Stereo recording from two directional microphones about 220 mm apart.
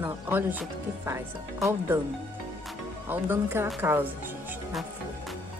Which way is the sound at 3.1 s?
10° right (ahead or behind).